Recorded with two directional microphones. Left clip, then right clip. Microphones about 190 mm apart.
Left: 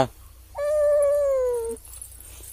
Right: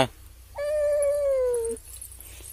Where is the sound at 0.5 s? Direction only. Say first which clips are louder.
Left 4 dB; centre (ahead or behind).